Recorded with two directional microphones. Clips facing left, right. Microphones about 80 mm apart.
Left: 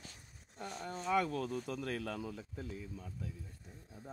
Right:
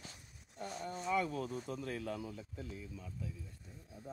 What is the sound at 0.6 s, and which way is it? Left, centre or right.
Speech, left.